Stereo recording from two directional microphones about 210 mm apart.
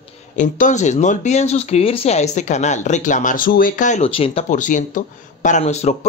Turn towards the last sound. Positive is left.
turn(degrees=30)  # may be behind; listen again after turning